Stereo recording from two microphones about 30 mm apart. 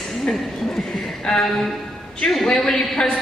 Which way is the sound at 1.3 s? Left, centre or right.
Centre.